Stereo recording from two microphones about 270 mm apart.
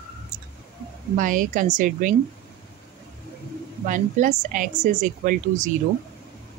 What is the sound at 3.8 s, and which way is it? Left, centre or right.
Speech, right.